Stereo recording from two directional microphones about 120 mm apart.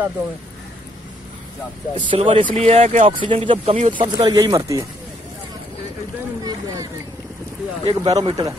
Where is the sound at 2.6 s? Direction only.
65° right (ahead or behind).